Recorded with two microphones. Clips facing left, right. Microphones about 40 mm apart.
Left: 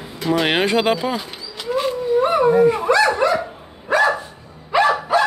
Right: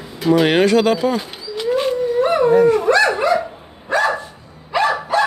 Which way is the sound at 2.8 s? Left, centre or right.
Right.